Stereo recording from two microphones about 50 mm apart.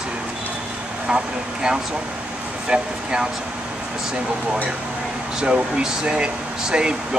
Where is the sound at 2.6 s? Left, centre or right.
Centre.